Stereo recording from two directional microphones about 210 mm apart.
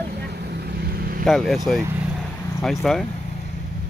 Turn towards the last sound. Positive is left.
turn(degrees=0)  # may be behind; listen again after turning